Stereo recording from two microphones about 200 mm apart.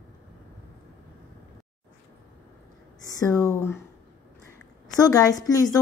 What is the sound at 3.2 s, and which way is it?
Speech, 15° left (ahead or behind).